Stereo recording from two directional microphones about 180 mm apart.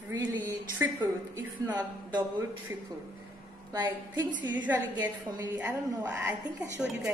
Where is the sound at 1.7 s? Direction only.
20° right (ahead or behind).